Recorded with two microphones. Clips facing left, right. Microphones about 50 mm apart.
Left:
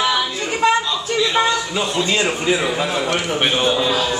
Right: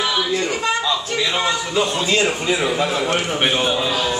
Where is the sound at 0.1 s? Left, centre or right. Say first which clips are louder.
Right 1 dB; centre.